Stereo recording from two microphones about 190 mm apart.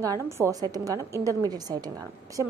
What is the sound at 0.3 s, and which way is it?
A woman's voice, 15° right (ahead or behind).